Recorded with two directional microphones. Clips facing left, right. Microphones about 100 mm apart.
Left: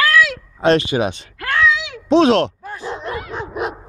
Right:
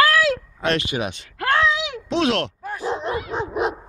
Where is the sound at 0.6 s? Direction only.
30° left (ahead or behind).